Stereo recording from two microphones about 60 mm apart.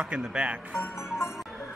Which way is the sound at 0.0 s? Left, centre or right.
Centre.